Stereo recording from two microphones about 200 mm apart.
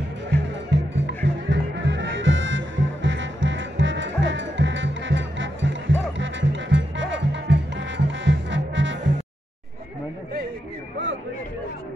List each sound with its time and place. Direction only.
0.7 s music: 60° right (ahead or behind)